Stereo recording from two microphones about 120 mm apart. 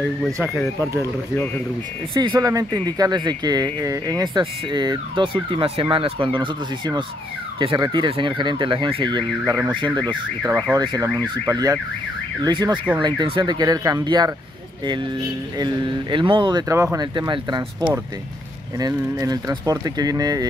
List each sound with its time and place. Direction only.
0.7 s speech: 25° right (ahead or behind)
1.3 s speech: 15° left (ahead or behind)
2.1 s speech: 35° right (ahead or behind)
9.8 s car alarm: 40° right (ahead or behind)
10.7 s speech: 35° right (ahead or behind)
15.5 s speech: 40° right (ahead or behind)
16.6 s speech: 25° right (ahead or behind)
17.0 s speech: 35° right (ahead or behind)